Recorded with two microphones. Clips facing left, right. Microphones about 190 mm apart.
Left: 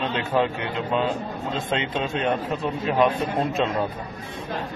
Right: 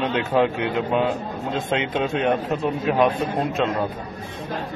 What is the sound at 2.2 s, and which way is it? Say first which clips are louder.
Speech: right 2 dB; 15° right (ahead or behind).